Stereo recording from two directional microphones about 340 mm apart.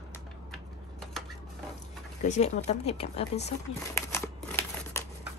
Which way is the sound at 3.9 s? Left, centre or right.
Centre.